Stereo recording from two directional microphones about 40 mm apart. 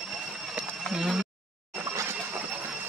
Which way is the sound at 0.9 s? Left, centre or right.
Centre.